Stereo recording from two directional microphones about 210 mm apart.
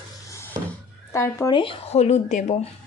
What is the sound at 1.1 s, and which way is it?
Speech, 15° left (ahead or behind).